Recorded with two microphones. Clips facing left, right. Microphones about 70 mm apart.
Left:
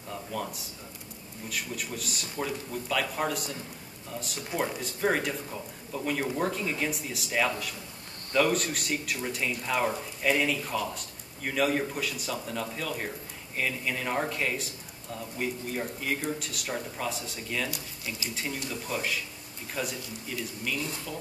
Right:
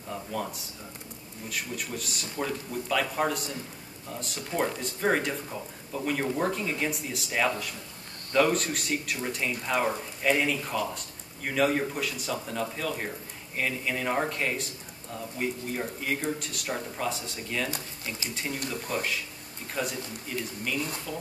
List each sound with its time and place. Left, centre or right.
0.1 s a sound: centre
1.5 s speech: centre
4.6 s speech: centre
17.6 s speech: right
18.3 s speech: centre